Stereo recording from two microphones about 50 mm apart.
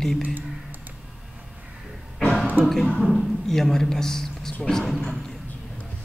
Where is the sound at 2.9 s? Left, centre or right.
Centre.